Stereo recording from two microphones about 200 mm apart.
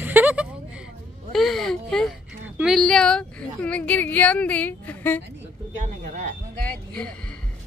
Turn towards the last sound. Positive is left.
turn(degrees=5)  # may be behind; listen again after turning